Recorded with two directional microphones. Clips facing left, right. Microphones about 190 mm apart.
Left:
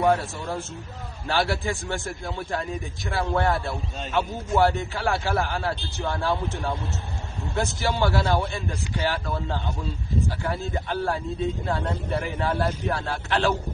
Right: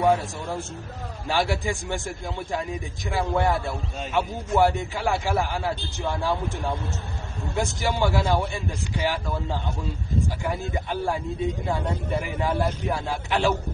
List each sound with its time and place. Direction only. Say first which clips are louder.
1.2 s a man's voice: even; 15° right (ahead or behind)
4.0 s a man's voice: even; 5° right (ahead or behind)